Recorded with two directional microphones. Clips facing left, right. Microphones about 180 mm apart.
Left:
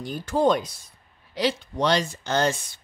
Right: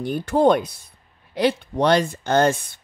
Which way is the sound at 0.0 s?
60° right (ahead or behind).